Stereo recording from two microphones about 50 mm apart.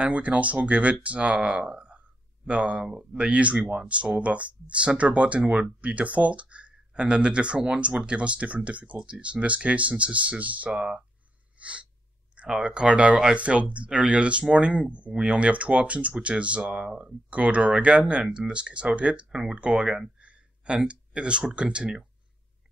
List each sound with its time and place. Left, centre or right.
0.0 s speech: right
10.7 s speech: centre
11.6 s gasp: right
12.4 s speech: centre